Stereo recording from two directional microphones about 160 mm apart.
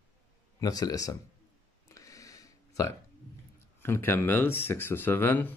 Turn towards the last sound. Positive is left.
turn(degrees=10)  # may be behind; listen again after turning